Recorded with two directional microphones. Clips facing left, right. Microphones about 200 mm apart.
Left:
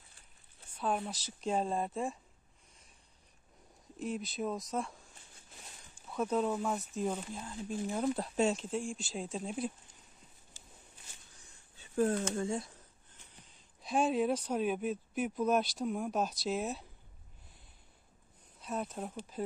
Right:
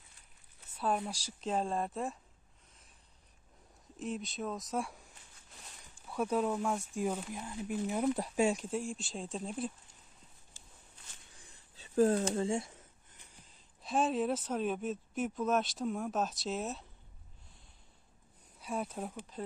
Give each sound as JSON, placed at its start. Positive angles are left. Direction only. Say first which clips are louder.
{"t": 1.0, "sound": "speech", "louder": "left 1 dB", "side_deg": 0}
{"t": 4.0, "sound": "speech", "louder": "left 2 dB", "side_deg": 0}
{"t": 6.0, "sound": "speech", "louder": "even", "side_deg": -5}
{"t": 7.0, "sound": "speech", "louder": "even", "side_deg": -10}
{"t": 11.4, "sound": "a sound", "louder": "right 2 dB", "side_deg": -35}
{"t": 13.8, "sound": "speech", "louder": "left 1 dB", "side_deg": 0}
{"t": 18.6, "sound": "speech", "louder": "even", "side_deg": -10}
{"t": 19.3, "sound": "speech", "louder": "left 4 dB", "side_deg": 5}